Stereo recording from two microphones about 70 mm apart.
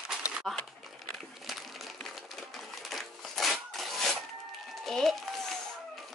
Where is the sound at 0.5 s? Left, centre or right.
Centre.